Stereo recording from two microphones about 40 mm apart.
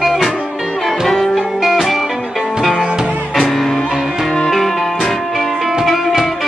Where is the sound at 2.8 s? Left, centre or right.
Centre.